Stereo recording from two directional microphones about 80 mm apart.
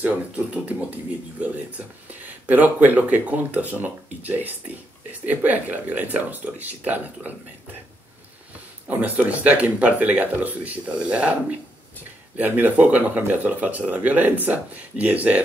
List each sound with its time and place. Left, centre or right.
0.0 s speech: centre
8.8 s speech: centre
12.5 s speech: centre